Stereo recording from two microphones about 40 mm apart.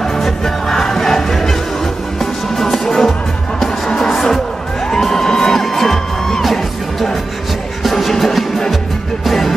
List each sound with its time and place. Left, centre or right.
0.2 s music: centre
2.5 s music: centre
5.0 s music: centre